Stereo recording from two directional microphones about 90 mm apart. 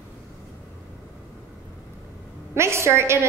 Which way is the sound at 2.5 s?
30° right (ahead or behind).